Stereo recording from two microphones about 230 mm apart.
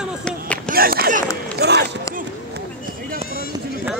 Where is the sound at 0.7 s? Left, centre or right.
Right.